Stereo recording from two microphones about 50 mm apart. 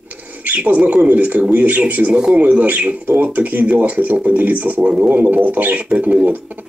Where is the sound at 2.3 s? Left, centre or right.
Right.